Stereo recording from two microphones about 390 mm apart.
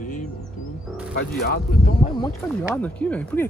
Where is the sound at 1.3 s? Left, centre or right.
Left.